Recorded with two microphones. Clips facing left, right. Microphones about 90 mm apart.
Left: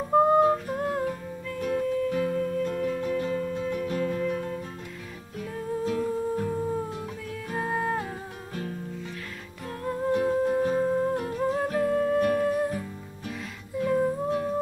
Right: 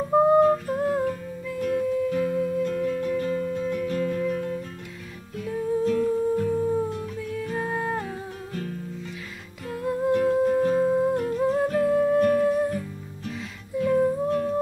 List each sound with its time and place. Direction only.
0.1 s music: centre (ahead or behind)
0.4 s music: 10° left (ahead or behind)
0.7 s humming: centre (ahead or behind)
1.8 s music: centre (ahead or behind)
2.6 s music: 5° left (ahead or behind)
3.7 s music: 10° left (ahead or behind)
5.9 s music: 15° left (ahead or behind)
9.7 s humming: 5° right (ahead or behind)
10.1 s music: 15° left (ahead or behind)
10.8 s music: 5° right (ahead or behind)
11.1 s music: 5° left (ahead or behind)
13.7 s humming: 5° left (ahead or behind)